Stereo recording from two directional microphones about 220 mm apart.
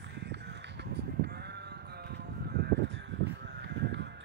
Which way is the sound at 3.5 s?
50° right (ahead or behind).